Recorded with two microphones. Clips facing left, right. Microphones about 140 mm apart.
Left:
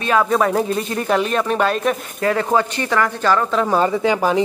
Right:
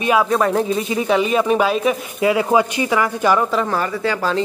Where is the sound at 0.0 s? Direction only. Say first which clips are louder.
Right 1 dB; 10° right (ahead or behind).